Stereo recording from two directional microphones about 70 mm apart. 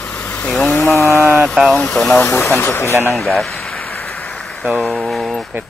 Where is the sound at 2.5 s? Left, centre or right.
Left.